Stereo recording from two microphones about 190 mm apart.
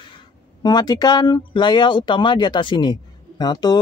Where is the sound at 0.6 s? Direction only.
20° left (ahead or behind).